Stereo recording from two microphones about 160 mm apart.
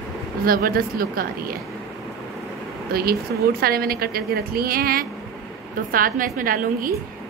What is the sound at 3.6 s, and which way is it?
A woman's voice, 70° right (ahead or behind).